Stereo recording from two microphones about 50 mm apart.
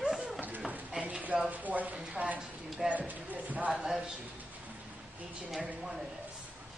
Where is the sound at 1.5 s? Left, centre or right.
Right.